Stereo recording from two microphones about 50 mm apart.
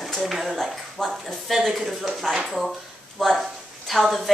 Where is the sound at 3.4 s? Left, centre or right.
Centre.